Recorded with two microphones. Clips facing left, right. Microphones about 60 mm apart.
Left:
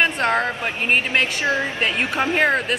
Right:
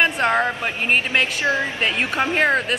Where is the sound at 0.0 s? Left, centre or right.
Centre.